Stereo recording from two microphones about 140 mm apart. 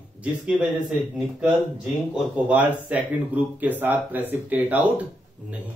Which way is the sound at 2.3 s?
10° right (ahead or behind).